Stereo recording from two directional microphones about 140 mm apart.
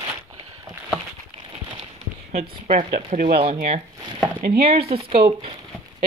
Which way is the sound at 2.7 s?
60° right (ahead or behind).